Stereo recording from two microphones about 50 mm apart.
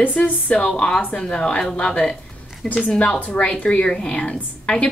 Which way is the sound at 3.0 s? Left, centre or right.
Left.